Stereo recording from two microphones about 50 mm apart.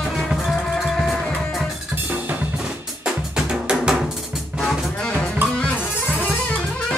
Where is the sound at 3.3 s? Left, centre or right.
Centre.